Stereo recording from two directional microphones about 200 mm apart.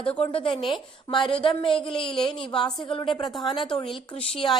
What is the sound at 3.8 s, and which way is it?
Speech, 25° left (ahead or behind).